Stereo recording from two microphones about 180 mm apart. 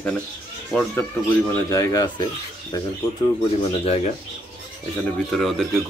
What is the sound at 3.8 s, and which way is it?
Speech, 35° left (ahead or behind).